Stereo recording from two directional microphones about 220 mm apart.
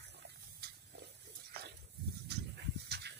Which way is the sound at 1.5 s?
45° right (ahead or behind).